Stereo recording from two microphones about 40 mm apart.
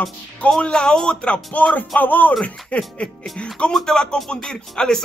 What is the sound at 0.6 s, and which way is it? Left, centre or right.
Speech, left.